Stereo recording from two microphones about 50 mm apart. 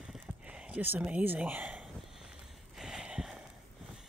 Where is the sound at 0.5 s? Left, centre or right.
Right.